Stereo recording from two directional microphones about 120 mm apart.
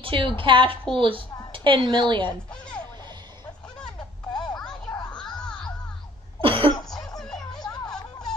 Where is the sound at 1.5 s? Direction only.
45° right (ahead or behind).